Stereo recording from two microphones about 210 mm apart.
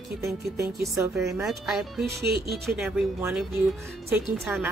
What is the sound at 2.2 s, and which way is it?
Speech, 50° right (ahead or behind).